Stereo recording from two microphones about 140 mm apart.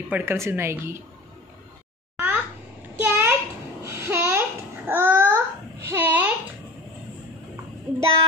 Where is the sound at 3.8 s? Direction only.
20° right (ahead or behind).